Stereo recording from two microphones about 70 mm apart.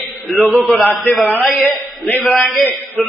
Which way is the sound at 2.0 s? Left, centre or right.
Left.